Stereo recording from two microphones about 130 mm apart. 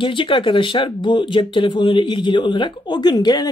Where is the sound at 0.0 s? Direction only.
40° left (ahead or behind).